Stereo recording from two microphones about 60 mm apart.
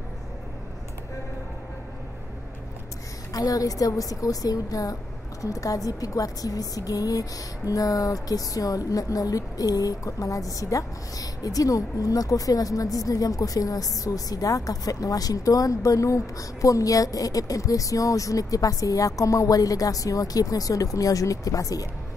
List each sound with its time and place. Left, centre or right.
3.3 s a woman's voice: left
5.4 s a woman's voice: left